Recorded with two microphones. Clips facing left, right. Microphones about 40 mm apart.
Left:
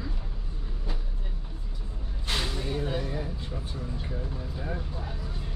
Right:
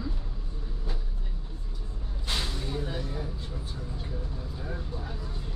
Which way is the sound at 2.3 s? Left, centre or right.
Centre.